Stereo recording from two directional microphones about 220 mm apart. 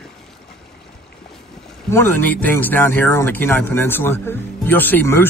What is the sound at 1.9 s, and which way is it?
Speech, 10° left (ahead or behind).